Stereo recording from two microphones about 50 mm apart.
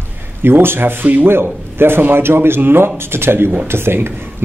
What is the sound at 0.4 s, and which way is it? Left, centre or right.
Speech, right.